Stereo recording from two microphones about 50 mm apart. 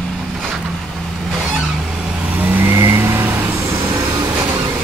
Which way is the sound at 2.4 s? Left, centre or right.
Right.